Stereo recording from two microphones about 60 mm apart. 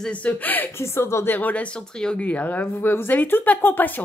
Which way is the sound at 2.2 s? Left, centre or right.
Left.